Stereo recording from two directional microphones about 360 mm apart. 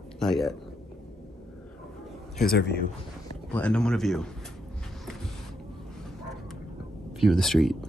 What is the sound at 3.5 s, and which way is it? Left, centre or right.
Speech, centre.